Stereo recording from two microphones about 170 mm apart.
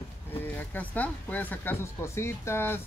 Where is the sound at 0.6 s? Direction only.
10° left (ahead or behind).